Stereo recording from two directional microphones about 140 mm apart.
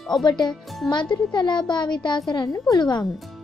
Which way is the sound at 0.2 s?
30° left (ahead or behind).